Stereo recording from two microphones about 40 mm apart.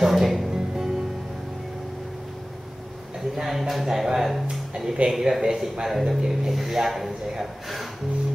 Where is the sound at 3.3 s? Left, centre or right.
Centre.